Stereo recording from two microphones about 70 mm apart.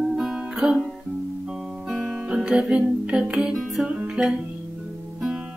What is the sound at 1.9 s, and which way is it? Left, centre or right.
Music, centre.